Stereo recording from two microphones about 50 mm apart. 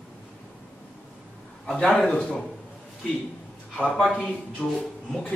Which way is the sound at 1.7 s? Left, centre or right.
Centre.